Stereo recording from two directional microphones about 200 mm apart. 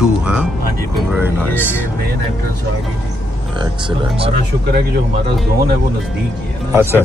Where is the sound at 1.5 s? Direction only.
10° left (ahead or behind).